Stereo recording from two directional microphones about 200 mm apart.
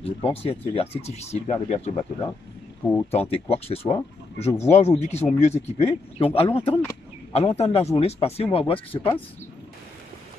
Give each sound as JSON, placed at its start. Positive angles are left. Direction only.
{"t": 0.0, "sound": "speech", "side_deg": 30}
{"t": 6.7, "sound": "speech", "side_deg": 10}
{"t": 7.3, "sound": "speech", "side_deg": 30}